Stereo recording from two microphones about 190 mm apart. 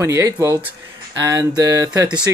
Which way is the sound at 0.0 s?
15° right (ahead or behind).